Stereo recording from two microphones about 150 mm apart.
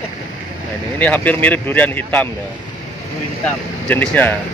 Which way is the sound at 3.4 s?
10° left (ahead or behind).